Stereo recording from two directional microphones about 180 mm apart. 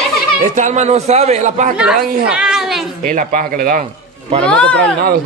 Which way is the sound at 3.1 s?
50° right (ahead or behind).